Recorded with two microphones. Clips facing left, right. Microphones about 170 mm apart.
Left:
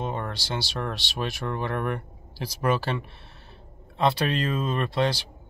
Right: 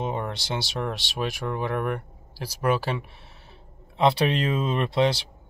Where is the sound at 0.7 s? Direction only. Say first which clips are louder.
Right 2 dB; 15° right (ahead or behind).